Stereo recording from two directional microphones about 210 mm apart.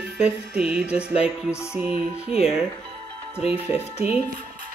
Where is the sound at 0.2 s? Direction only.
5° right (ahead or behind).